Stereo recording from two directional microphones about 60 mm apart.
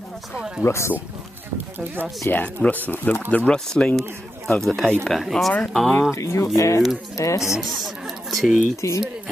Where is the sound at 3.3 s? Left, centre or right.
Centre.